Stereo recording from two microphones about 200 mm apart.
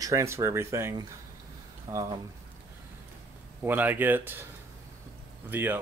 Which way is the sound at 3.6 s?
10° right (ahead or behind).